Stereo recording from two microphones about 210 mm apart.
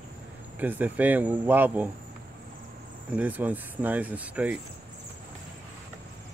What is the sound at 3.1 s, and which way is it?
Speech, 10° right (ahead or behind).